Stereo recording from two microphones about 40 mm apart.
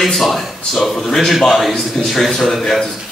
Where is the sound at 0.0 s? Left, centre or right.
Centre.